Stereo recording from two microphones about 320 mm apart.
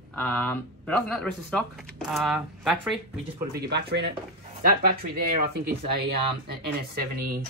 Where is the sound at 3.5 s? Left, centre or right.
Right.